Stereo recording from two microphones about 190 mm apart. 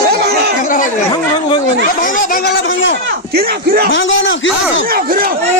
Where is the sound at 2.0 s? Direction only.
45° left (ahead or behind).